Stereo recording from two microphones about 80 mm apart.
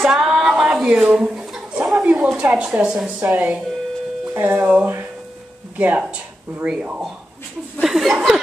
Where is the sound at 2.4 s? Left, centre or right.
Centre.